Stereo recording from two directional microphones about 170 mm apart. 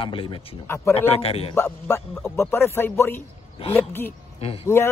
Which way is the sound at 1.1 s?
35° left (ahead or behind).